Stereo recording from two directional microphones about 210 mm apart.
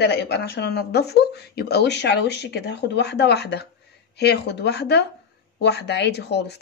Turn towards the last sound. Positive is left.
turn(degrees=50)  # may be behind; listen again after turning